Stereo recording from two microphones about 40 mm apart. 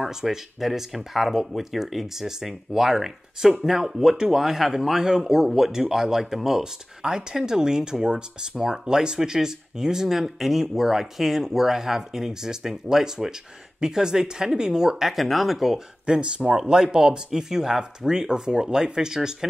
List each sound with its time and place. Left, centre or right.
0.0 s speech: centre
15.0 s speech: centre
16.1 s speech: right